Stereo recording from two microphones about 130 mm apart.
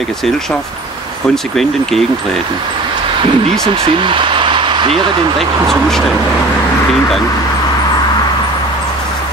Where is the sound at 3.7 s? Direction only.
45° right (ahead or behind).